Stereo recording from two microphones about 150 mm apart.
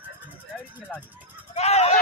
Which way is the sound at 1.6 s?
45° left (ahead or behind).